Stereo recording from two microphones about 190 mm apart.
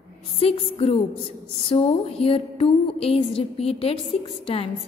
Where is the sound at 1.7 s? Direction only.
35° left (ahead or behind).